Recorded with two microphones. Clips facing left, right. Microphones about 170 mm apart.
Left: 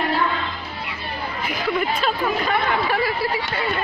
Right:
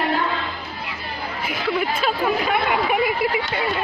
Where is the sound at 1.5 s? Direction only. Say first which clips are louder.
Even; 5° right (ahead or behind).